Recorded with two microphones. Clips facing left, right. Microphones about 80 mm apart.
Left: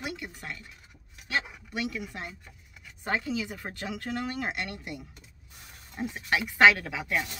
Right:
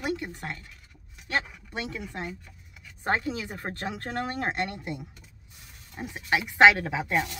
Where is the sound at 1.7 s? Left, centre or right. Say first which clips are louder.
Left 1 dB; right.